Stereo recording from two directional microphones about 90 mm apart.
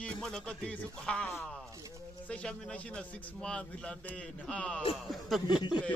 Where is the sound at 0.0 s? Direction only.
10° left (ahead or behind).